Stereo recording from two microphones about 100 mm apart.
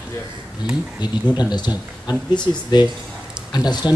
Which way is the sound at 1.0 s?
45° left (ahead or behind).